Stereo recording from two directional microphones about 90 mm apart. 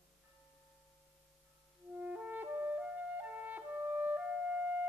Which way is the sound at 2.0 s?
15° right (ahead or behind).